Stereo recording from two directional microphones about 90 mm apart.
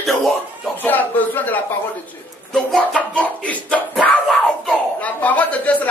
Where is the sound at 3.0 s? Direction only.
15° left (ahead or behind).